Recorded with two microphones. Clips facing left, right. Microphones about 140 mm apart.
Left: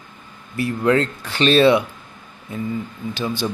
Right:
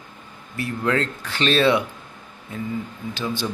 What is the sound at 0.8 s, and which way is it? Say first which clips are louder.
Speech: left 5 dB; 20° left (ahead or behind).